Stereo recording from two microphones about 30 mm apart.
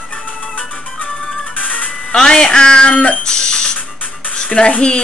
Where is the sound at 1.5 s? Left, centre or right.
Left.